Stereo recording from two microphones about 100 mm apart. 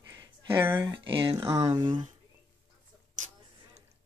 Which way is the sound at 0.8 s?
55° right (ahead or behind).